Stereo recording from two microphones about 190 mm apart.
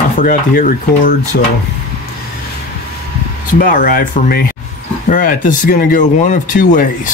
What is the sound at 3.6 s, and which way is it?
Speech, 45° left (ahead or behind).